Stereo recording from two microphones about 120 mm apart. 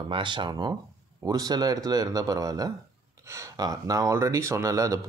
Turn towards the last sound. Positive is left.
turn(degrees=-25)  # may be behind; listen again after turning